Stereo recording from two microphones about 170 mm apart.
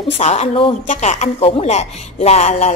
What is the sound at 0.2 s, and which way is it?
A woman's voice, 40° left (ahead or behind).